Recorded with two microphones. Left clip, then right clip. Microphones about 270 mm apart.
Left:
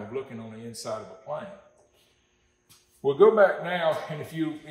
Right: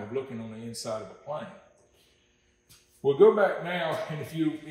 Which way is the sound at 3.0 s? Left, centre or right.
Centre.